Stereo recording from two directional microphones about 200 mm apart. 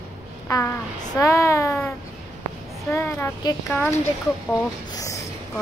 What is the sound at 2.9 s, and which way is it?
A child's voice, 10° left (ahead or behind).